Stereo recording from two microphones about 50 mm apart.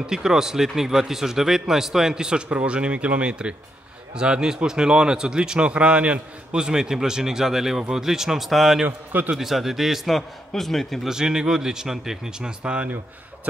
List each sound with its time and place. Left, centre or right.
0.0 s a man's voice: centre
8.8 s a man's voice: right
9.4 s a man's voice: centre
11.1 s a man's voice: centre